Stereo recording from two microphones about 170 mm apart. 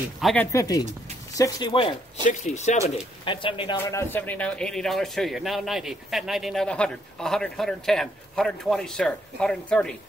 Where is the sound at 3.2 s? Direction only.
30° left (ahead or behind).